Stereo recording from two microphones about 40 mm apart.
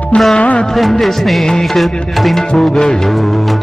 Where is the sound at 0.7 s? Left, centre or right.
Centre.